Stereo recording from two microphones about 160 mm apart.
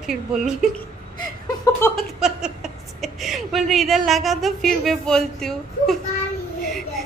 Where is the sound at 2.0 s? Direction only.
5° right (ahead or behind).